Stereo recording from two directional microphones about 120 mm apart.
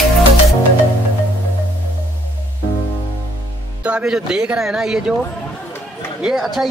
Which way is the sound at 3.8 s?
10° right (ahead or behind).